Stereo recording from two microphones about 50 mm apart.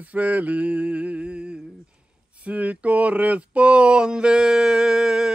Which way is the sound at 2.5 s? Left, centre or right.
Right.